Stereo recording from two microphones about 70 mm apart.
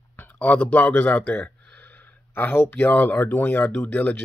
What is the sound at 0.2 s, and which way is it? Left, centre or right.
Speech, left.